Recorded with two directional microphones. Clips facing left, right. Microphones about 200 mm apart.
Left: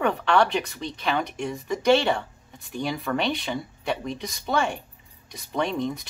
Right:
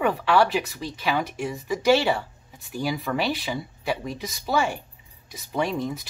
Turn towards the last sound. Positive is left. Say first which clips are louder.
# even
turn(degrees=-5)  # may be behind; listen again after turning